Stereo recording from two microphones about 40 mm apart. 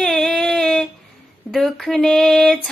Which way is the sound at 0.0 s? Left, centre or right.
Centre.